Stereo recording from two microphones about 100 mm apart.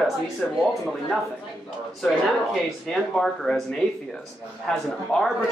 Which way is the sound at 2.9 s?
Centre (ahead or behind).